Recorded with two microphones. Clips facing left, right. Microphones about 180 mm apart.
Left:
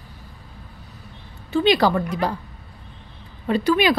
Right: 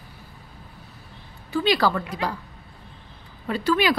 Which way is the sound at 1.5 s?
20° left (ahead or behind).